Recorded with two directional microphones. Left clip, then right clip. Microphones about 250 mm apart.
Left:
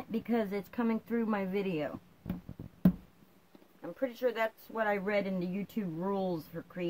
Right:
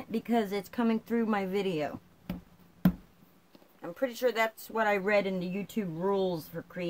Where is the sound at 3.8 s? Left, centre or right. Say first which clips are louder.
Right 3 dB; right.